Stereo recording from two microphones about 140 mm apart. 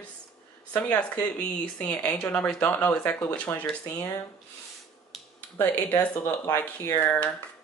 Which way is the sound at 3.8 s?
25° left (ahead or behind).